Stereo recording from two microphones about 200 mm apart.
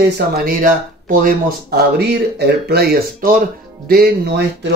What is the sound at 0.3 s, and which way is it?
Speech, 45° right (ahead or behind).